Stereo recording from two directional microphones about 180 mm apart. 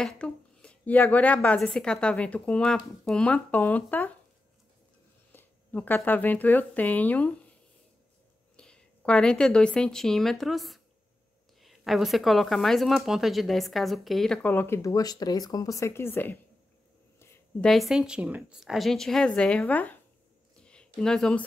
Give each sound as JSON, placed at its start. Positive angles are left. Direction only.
{"t": 0.0, "sound": "a woman's voice", "side_deg": 5}
{"t": 5.3, "sound": "speech", "side_deg": 10}
{"t": 8.5, "sound": "a woman's voice", "side_deg": 5}
{"t": 17.2, "sound": "a sound", "side_deg": 15}
{"t": 17.6, "sound": "a woman's voice", "side_deg": 0}
{"t": 20.6, "sound": "a sound", "side_deg": 5}